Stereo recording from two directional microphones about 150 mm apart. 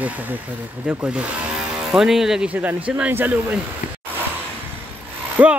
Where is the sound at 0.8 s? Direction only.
5° right (ahead or behind).